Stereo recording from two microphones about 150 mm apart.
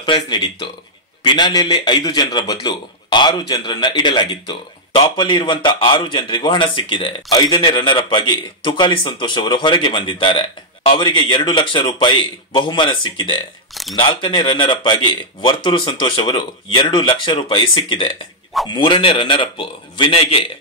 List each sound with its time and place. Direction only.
0.0 s a man's voice: 30° left (ahead or behind)